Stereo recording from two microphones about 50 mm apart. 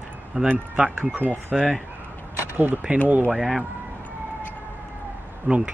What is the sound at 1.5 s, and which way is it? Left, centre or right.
Speech, centre.